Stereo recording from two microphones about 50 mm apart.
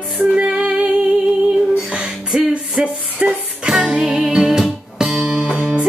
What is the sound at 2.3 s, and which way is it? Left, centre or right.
Music, right.